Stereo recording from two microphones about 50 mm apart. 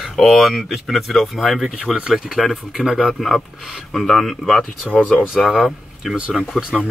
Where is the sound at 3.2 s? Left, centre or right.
Centre.